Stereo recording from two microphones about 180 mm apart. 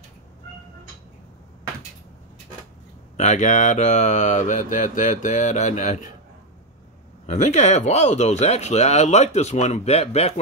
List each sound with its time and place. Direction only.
3.2 s speech: 40° left (ahead or behind)
7.2 s speech: 40° left (ahead or behind)